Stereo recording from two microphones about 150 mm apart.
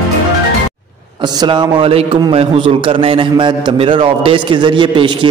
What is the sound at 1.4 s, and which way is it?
A man's voice, 30° right (ahead or behind).